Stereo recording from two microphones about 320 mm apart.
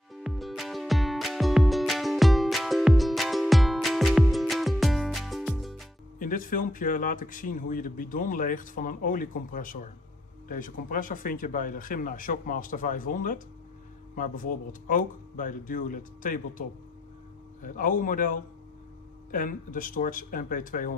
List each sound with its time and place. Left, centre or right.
0.1 s music: centre
6.1 s speech: left